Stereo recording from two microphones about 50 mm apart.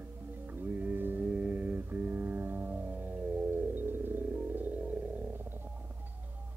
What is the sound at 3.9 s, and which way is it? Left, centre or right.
Music, right.